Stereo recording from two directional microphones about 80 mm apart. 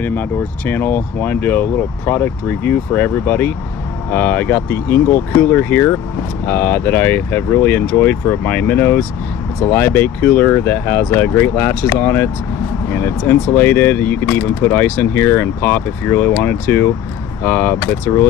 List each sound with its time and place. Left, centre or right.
0.0 s speech: left